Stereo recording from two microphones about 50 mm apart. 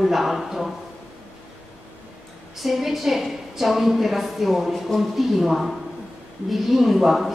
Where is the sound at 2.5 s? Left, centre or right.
Centre.